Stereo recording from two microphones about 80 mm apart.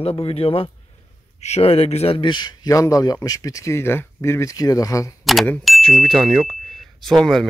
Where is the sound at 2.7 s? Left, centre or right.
Left.